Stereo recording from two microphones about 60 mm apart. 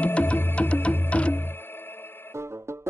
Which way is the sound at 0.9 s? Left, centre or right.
Left.